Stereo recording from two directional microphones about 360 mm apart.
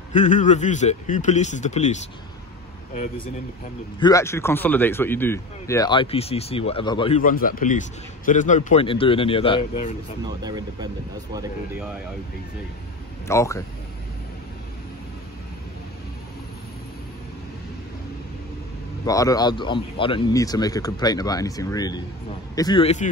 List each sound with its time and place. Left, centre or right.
0.1 s a man's voice: left
4.0 s speech: centre
10.4 s speech: centre
13.3 s speech: centre
19.0 s speech: centre